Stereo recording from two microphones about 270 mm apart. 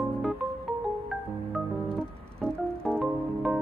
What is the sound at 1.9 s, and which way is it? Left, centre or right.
Music, centre.